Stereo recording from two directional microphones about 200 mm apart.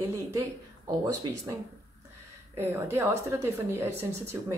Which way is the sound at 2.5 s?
10° right (ahead or behind).